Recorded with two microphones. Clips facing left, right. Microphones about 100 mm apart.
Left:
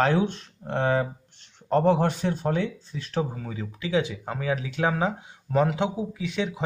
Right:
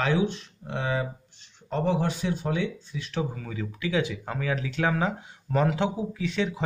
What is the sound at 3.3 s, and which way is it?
Speech, 25° left (ahead or behind).